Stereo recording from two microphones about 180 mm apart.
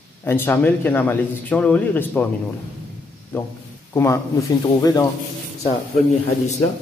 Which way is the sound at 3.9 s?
15° left (ahead or behind).